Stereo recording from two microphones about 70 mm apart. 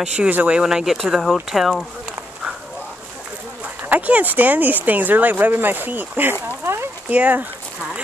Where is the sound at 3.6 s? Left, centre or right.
Right.